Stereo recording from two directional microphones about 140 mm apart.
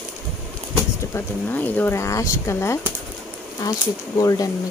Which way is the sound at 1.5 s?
10° left (ahead or behind).